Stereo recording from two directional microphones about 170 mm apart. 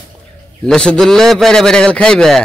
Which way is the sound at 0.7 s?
5° left (ahead or behind).